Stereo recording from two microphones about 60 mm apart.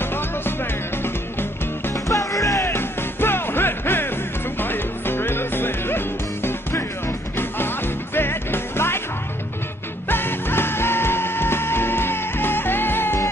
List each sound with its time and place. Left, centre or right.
0.0 s music: left
2.0 s music: left
2.7 s music: left
10.0 s music: left